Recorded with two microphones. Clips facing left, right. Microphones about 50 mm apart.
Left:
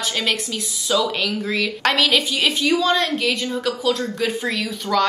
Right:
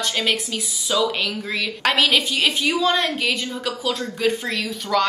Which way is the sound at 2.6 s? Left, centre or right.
Right.